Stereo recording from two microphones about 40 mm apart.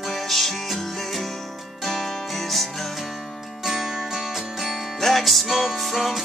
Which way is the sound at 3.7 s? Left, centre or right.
Centre.